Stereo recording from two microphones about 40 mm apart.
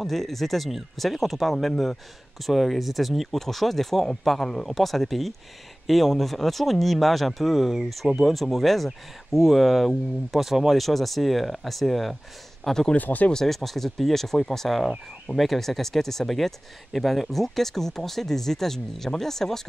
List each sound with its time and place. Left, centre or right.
0.0 s speech: centre
12.6 s speech: centre
12.9 s speech: left
13.3 s speech: centre